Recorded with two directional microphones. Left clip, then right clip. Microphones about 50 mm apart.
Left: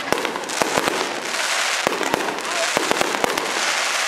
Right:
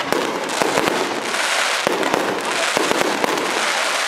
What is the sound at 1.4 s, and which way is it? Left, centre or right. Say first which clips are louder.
Fireworks: right 2 dB; centre.